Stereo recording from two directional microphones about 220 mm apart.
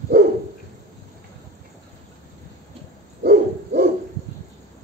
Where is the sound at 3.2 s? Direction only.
45° right (ahead or behind).